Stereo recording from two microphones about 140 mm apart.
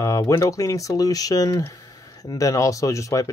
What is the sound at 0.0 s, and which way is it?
Speech, 25° left (ahead or behind).